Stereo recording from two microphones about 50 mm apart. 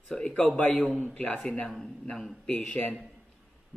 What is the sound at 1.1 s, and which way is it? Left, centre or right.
Speech, left.